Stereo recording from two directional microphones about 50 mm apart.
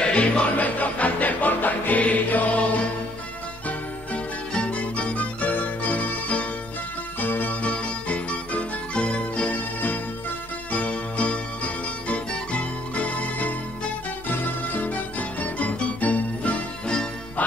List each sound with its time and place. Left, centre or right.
0.0 s music: left
7.7 s music: left
16.8 s music: centre
17.4 s music: left